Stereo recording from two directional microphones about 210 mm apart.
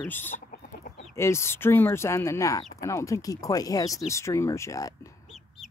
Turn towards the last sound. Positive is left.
turn(degrees=15)  # may be behind; listen again after turning